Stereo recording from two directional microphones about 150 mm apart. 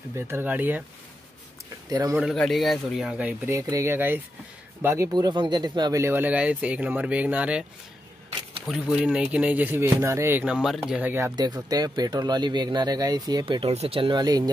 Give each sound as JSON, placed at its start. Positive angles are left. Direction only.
{"t": 0.1, "sound": "speech", "side_deg": -15}
{"t": 1.9, "sound": "speech", "side_deg": -25}
{"t": 2.1, "sound": "speech", "side_deg": 0}
{"t": 8.6, "sound": "speech", "side_deg": 0}
{"t": 11.3, "sound": "speech", "side_deg": -25}